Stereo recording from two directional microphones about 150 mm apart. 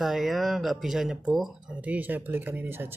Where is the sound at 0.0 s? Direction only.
Centre (ahead or behind).